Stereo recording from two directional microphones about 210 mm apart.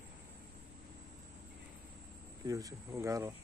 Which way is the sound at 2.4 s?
15° right (ahead or behind).